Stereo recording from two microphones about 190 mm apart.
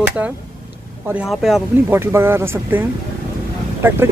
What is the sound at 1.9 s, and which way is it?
Speech, 10° right (ahead or behind).